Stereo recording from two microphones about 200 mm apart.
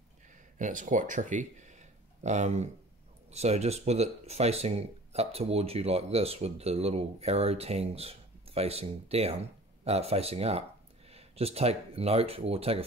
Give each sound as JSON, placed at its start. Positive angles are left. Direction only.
{"t": 0.6, "sound": "speech", "side_deg": -40}